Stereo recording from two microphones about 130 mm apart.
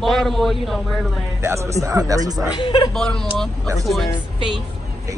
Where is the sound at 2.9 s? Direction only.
5° left (ahead or behind).